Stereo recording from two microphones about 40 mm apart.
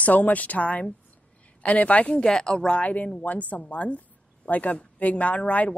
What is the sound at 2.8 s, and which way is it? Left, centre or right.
A woman's voice, left.